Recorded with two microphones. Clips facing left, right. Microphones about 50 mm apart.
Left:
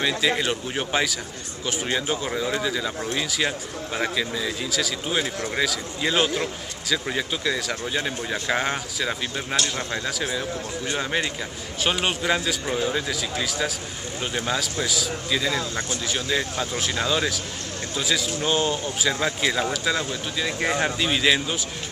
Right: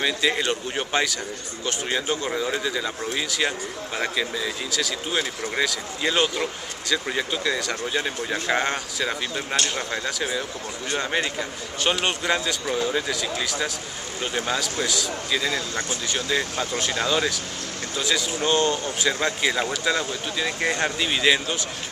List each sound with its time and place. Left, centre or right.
0.0 s speech: centre
11.8 s speech: centre